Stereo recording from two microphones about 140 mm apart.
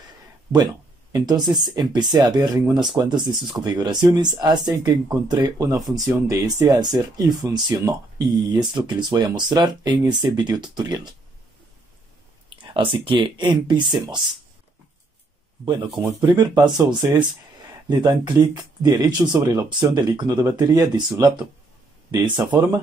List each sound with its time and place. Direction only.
1.1 s speech: 30° right (ahead or behind)
12.4 s speech: 40° right (ahead or behind)
15.6 s speech: 35° right (ahead or behind)
16.0 s speech: 20° right (ahead or behind)